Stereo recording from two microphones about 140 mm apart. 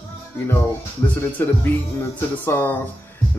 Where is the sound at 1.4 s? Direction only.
15° left (ahead or behind).